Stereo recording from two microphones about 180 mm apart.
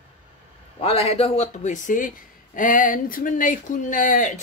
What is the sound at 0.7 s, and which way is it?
A man's voice, 30° left (ahead or behind).